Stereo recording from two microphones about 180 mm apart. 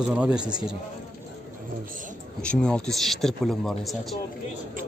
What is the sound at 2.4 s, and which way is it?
A man's voice, 5° left (ahead or behind).